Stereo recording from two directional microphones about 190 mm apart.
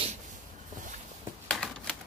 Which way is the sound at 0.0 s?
40° right (ahead or behind).